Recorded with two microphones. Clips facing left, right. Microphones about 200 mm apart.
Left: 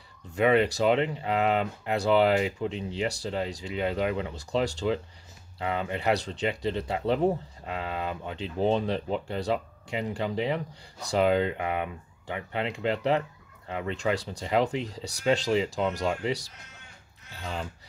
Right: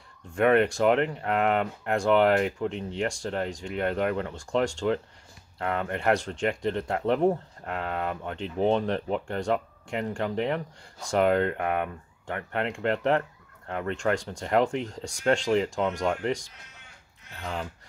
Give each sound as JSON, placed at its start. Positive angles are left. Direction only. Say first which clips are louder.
{"t": 0.3, "sound": "speech", "louder": "right 1 dB", "side_deg": 5}
{"t": 17.4, "sound": "speech", "louder": "right 1 dB", "side_deg": 0}